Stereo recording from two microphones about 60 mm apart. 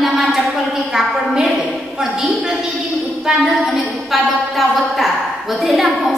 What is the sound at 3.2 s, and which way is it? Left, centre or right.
A woman's voice, centre.